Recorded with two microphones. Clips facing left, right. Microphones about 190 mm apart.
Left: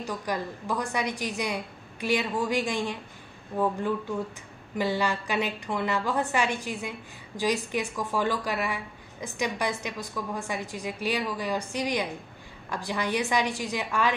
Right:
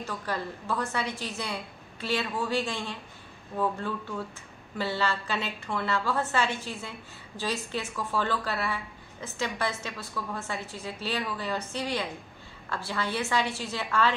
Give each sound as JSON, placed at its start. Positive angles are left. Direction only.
{"t": 0.0, "sound": "a woman's voice", "side_deg": 15}